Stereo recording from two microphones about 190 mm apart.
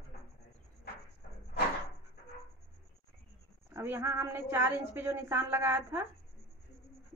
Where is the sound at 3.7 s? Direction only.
10° right (ahead or behind).